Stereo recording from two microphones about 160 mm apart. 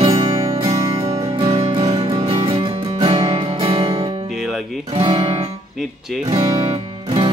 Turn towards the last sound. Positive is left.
turn(degrees=-30)  # may be behind; listen again after turning